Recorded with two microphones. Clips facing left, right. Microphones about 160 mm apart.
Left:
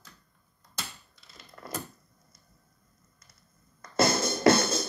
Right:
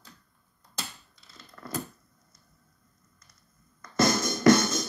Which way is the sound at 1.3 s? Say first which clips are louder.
Right 1 dB; 20° left (ahead or behind).